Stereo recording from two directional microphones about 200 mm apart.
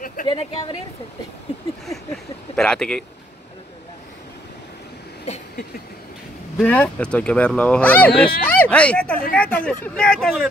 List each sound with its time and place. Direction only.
0.0 s a sound: 45° left (ahead or behind)
0.3 s speech: 25° left (ahead or behind)
2.5 s speech: 5° left (ahead or behind)
6.6 s speech: 5° left (ahead or behind)